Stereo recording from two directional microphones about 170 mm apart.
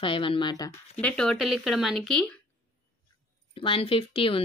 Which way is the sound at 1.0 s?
5° left (ahead or behind).